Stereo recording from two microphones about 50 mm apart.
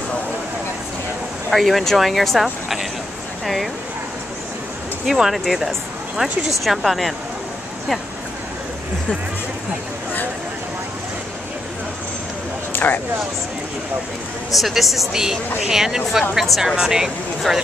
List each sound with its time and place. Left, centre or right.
1.5 s speech: centre
5.0 s speech: centre
12.7 s speech: left
14.5 s speech: centre